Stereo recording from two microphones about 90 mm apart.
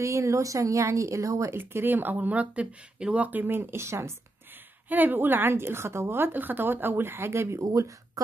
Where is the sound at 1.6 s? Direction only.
25° right (ahead or behind).